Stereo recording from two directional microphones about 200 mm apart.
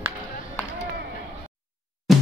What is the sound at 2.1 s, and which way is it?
Music, centre (ahead or behind).